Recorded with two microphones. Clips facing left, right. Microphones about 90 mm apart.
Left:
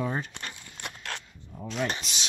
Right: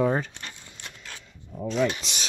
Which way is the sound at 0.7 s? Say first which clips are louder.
Left 5 dB; 70° left (ahead or behind).